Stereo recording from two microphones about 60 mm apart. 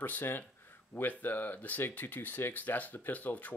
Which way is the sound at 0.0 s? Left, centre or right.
Left.